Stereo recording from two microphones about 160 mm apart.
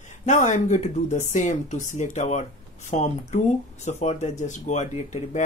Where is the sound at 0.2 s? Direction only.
50° left (ahead or behind).